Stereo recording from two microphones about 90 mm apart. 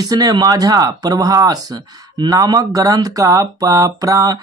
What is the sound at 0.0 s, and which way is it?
Speech, 45° right (ahead or behind).